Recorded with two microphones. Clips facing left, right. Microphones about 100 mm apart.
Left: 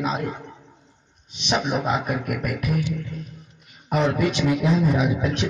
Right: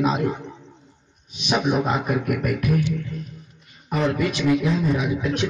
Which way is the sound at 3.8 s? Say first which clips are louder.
Left 1 dB; 20° left (ahead or behind).